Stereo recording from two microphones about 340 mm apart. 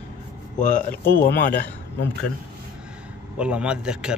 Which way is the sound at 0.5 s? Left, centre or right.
Left.